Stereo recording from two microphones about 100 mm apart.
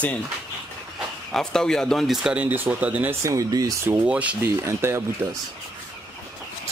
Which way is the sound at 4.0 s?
15° right (ahead or behind).